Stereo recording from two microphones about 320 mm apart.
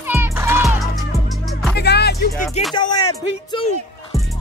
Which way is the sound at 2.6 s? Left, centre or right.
Centre.